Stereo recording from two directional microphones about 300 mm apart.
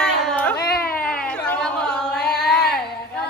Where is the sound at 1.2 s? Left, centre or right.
Centre.